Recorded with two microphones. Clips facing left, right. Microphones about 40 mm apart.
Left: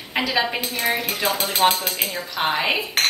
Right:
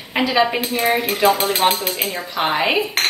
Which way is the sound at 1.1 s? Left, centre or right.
Right.